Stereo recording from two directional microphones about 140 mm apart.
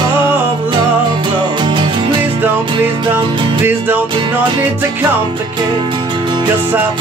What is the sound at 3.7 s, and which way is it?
Music, 15° right (ahead or behind).